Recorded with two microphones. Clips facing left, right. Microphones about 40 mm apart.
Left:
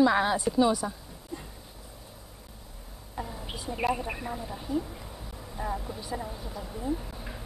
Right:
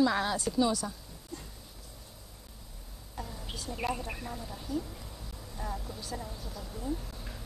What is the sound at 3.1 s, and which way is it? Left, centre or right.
A woman's voice, centre.